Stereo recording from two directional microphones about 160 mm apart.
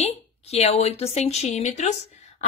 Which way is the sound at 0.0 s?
40° left (ahead or behind).